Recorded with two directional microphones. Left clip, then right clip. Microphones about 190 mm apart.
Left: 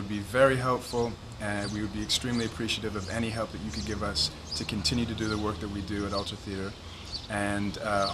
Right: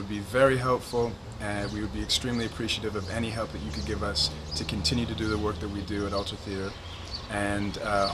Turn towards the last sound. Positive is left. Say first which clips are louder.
# right 1 dB
turn(degrees=0)  # may be behind; listen again after turning